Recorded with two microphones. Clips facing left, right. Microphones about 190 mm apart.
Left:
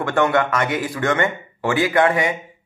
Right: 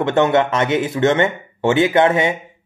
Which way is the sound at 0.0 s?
20° right (ahead or behind).